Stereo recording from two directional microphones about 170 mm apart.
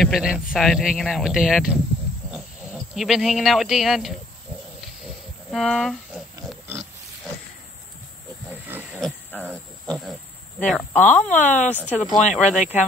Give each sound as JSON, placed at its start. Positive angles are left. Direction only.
{"t": 0.0, "sound": "speech", "side_deg": -5}
{"t": 5.5, "sound": "speech", "side_deg": 0}
{"t": 8.5, "sound": "wild animals", "side_deg": -10}
{"t": 9.3, "sound": "cricket", "side_deg": 10}
{"t": 10.7, "sound": "speech", "side_deg": 10}
{"t": 11.3, "sound": "speech", "side_deg": 45}
{"t": 11.9, "sound": "speech", "side_deg": 10}
{"t": 12.4, "sound": "speech", "side_deg": 45}